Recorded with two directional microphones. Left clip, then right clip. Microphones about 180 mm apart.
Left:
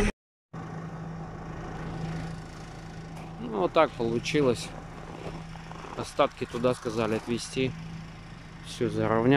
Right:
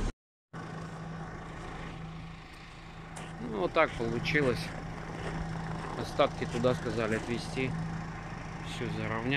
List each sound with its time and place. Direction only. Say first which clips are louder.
3.5 s speech: left 4 dB; 15° left (ahead or behind)
5.9 s speech: left 3 dB; 10° left (ahead or behind)
8.7 s speech: left 10 dB; 35° left (ahead or behind)